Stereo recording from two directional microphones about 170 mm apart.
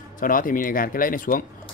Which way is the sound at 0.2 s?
55° left (ahead or behind).